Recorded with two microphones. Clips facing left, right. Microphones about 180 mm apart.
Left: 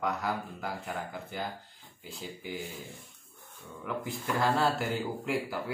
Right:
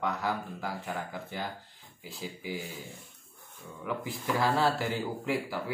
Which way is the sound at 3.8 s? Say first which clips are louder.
Right 1 dB; centre (ahead or behind).